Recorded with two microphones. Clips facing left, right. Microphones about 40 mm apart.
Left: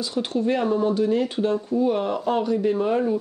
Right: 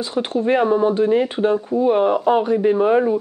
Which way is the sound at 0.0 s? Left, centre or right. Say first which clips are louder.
Right 4 dB; right.